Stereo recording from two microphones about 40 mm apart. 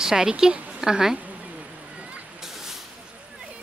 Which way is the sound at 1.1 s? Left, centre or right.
Right.